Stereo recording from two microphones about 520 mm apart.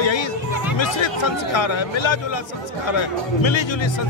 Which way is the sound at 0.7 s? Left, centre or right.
Left.